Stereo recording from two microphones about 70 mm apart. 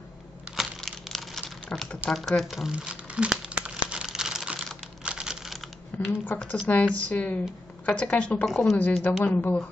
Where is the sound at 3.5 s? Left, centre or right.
Centre.